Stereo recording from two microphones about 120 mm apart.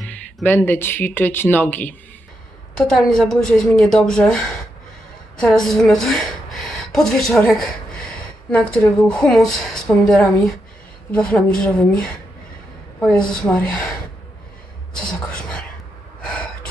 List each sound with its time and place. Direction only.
0.0 s a woman's voice: 15° left (ahead or behind)
5.4 s a woman's voice: 5° left (ahead or behind)
13.1 s speech: 10° left (ahead or behind)
15.0 s speech: 10° left (ahead or behind)
16.2 s gasp: 10° left (ahead or behind)